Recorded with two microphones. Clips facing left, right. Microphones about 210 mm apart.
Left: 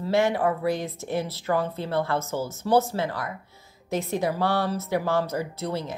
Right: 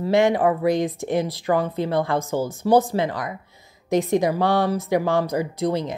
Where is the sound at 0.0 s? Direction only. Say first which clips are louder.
Right 5 dB; 15° right (ahead or behind).